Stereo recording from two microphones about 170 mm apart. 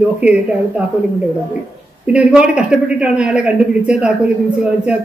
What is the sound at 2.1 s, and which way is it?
Speech, 5° right (ahead or behind).